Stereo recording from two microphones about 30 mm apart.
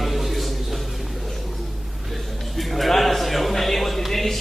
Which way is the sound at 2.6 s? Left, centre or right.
Centre.